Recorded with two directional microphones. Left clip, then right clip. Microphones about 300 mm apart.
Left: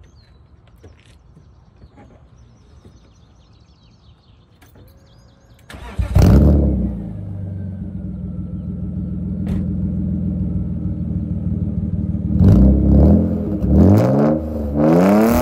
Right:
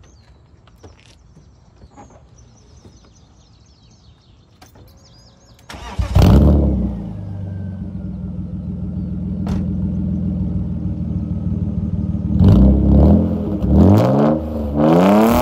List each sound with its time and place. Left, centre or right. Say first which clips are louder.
2.0 s vehicle: right 5 dB; right
5.7 s vehicle: right 2 dB; centre
9.4 s vehicle: right 1 dB; right
9.7 s vehicle: right 1 dB; centre